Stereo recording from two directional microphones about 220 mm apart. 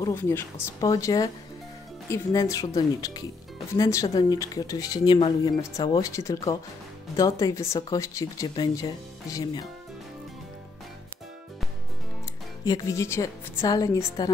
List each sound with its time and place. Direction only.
0.0 s speech: 10° left (ahead or behind)
12.6 s speech: 15° left (ahead or behind)